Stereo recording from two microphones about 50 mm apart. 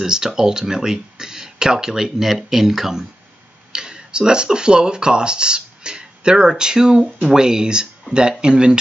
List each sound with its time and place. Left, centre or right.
0.0 s speech: centre